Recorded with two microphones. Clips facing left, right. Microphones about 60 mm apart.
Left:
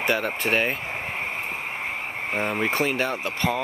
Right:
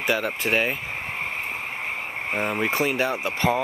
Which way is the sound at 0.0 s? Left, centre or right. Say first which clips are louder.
Even; centre.